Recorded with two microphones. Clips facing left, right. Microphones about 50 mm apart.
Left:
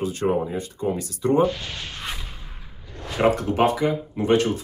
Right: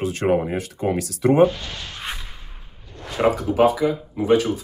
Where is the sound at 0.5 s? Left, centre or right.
Right.